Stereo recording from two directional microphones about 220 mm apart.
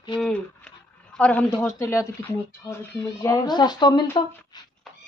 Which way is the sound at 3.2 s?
15° left (ahead or behind).